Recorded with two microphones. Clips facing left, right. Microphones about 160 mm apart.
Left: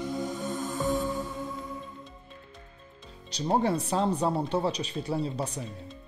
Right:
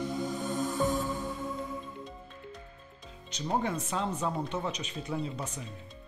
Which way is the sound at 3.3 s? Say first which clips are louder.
Left 5 dB; 35° left (ahead or behind).